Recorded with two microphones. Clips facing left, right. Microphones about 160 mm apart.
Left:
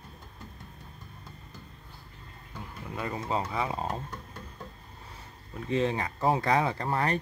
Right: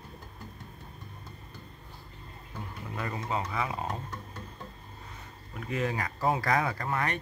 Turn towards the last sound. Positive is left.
turn(degrees=30)  # may be behind; listen again after turning